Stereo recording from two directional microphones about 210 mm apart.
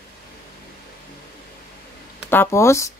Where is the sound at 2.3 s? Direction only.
10° left (ahead or behind).